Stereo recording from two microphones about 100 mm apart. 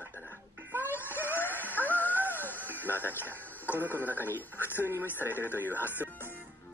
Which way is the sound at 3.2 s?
20° right (ahead or behind).